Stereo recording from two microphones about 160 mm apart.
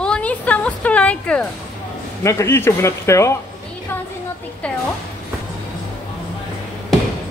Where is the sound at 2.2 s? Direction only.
15° left (ahead or behind).